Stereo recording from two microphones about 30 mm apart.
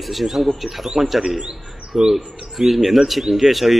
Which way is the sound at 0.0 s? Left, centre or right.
Centre.